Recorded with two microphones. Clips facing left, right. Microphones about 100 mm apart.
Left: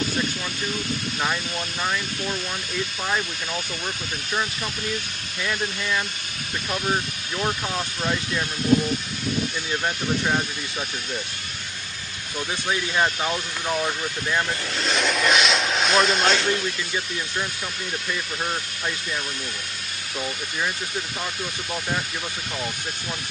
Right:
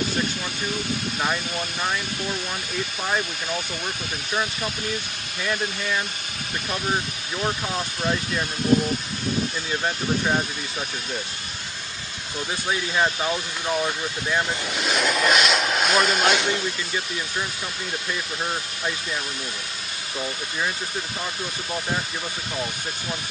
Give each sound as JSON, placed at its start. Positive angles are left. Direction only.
{"t": 7.4, "sound": "speech", "side_deg": -5}
{"t": 9.7, "sound": "speech", "side_deg": -5}
{"t": 12.6, "sound": "speech", "side_deg": 0}
{"t": 16.3, "sound": "speech", "side_deg": -15}